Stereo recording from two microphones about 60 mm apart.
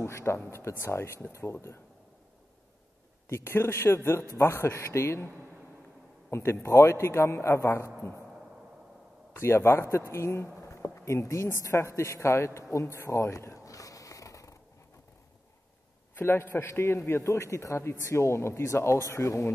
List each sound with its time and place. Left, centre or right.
0.0 s a man's voice: left
3.3 s a man's voice: left
6.3 s a man's voice: left
9.4 s a man's voice: left
13.7 s snort: left
16.2 s a man's voice: left